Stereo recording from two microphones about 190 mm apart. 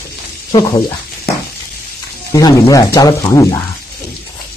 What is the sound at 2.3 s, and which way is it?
Speech, 20° left (ahead or behind).